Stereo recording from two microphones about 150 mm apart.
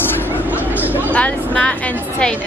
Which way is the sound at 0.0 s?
15° left (ahead or behind).